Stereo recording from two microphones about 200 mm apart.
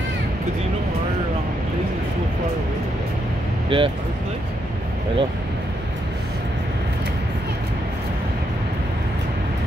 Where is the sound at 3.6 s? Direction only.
25° right (ahead or behind).